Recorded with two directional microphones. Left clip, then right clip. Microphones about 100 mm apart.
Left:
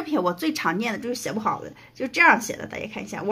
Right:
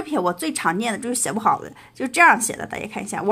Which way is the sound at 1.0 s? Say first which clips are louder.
Right 4 dB; 60° right (ahead or behind).